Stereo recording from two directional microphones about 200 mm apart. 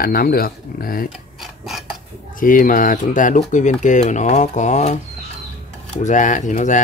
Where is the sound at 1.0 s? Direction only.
Centre (ahead or behind).